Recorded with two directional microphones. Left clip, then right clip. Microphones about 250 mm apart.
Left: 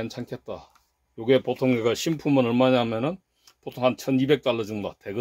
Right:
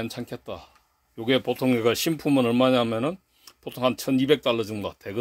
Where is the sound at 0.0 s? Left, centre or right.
Centre.